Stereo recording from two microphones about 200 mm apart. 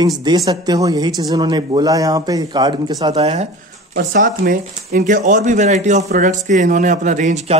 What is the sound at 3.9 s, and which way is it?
Speech, 45° right (ahead or behind).